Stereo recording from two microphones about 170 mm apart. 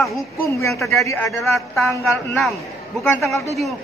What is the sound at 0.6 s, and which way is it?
Speech, 15° left (ahead or behind).